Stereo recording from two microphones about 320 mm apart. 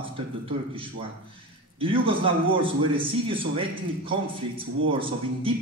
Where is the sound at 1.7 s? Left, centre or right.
Centre.